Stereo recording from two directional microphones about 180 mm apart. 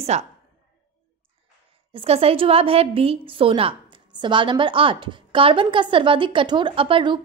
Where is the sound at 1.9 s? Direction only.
35° right (ahead or behind).